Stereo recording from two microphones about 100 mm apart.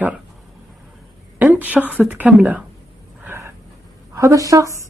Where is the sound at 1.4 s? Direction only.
15° right (ahead or behind).